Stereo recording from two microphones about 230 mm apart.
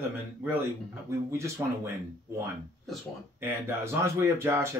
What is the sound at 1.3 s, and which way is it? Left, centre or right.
Speech, centre.